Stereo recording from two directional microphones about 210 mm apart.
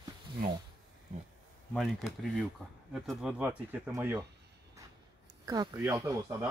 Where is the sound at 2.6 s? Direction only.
5° left (ahead or behind).